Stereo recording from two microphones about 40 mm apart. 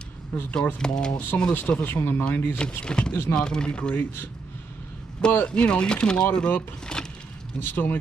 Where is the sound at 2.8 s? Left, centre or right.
Left.